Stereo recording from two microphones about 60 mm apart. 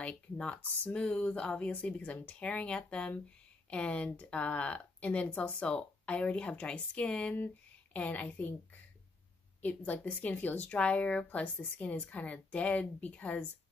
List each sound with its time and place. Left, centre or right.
0.0 s speech: left
9.6 s speech: left